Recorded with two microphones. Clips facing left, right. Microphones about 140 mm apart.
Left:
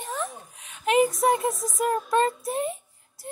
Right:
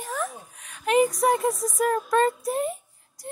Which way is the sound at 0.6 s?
25° left (ahead or behind).